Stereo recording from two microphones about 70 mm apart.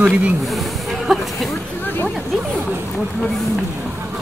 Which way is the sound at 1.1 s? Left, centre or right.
Centre.